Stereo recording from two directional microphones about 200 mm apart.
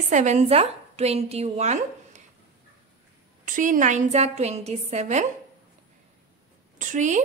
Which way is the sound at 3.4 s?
40° right (ahead or behind).